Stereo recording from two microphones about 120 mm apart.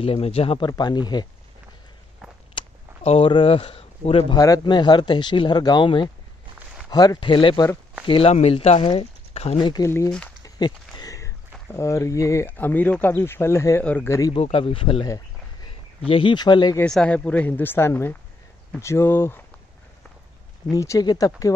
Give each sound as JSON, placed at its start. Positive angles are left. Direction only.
{"t": 0.0, "sound": "speech", "side_deg": 50}
{"t": 0.7, "sound": "speech", "side_deg": 35}
{"t": 2.6, "sound": "a sound", "side_deg": 45}
{"t": 3.0, "sound": "speech", "side_deg": 55}
{"t": 4.4, "sound": "speech", "side_deg": 35}
{"t": 8.1, "sound": "speech", "side_deg": 60}
{"t": 9.6, "sound": "speech", "side_deg": 35}
{"t": 14.3, "sound": "speech", "side_deg": 50}
{"t": 16.1, "sound": "speech", "side_deg": 45}
{"t": 16.8, "sound": "speech", "side_deg": 10}
{"t": 20.7, "sound": "speech", "side_deg": 30}